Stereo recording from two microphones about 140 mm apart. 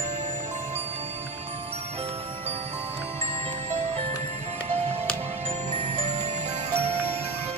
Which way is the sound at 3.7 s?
45° right (ahead or behind).